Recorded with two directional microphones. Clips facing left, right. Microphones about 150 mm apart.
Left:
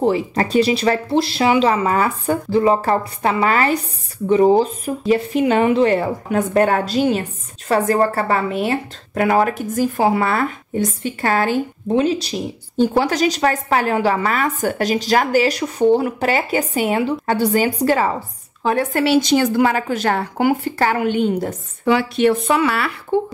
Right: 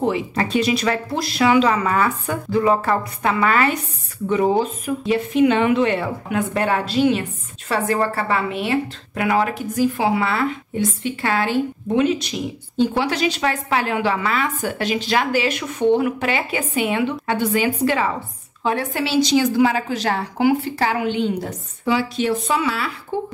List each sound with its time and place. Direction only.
0.0 s a woman's voice: 35° left (ahead or behind)
11.9 s a woman's voice: 35° left (ahead or behind); by 22.9 s 65° left (ahead or behind)